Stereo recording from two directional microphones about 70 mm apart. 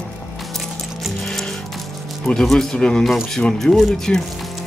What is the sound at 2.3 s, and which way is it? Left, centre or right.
A man's voice, centre.